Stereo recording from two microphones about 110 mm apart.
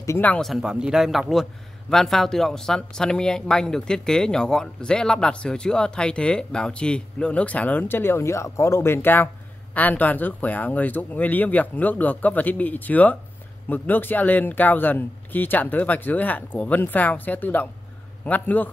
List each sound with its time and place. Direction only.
0.4 s a man's voice: centre (ahead or behind); by 18.7 s 15° left (ahead or behind)